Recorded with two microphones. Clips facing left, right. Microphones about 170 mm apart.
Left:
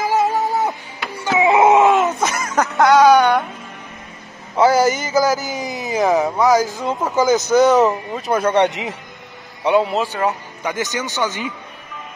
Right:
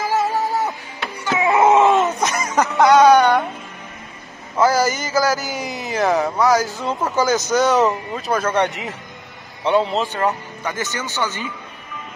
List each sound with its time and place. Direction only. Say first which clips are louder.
0.0 s music: left 2 dB; 20° left (ahead or behind)
1.4 s a sound: left 2 dB; 20° left (ahead or behind)
1.8 s a sound: left 1 dB; centre (ahead or behind)
4.6 s a man's voice: left 3 dB; 20° left (ahead or behind)
9.8 s a man's voice: left 1 dB; centre (ahead or behind)
10.6 s speech: left 5 dB; 15° left (ahead or behind)